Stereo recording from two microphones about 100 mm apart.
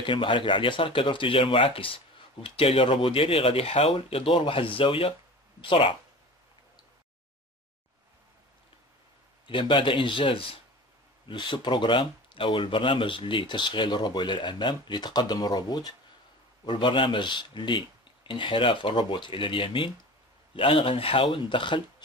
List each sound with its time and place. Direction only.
0.0 s speech: 55° left (ahead or behind)
2.4 s speech: 75° left (ahead or behind); by 5.9 s 55° left (ahead or behind)
9.5 s speech: 50° left (ahead or behind)